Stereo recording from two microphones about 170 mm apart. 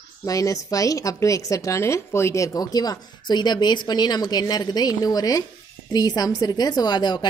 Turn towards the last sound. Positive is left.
turn(degrees=25)  # may be behind; listen again after turning